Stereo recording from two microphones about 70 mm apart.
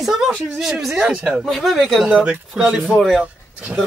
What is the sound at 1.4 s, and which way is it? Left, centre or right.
Speech, centre.